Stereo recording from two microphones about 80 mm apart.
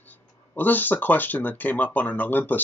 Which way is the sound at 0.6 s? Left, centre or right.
Left.